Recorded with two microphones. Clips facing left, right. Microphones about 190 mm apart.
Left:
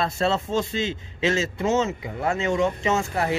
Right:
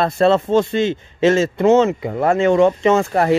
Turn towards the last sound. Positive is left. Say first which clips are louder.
# right 9 dB
turn(degrees=-55)  # may be behind; listen again after turning